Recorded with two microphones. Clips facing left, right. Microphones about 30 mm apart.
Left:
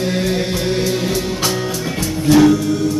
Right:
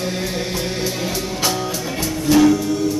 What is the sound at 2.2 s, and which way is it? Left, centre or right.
Music, centre.